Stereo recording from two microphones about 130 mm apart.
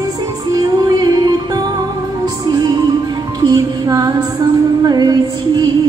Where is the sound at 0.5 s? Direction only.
30° right (ahead or behind).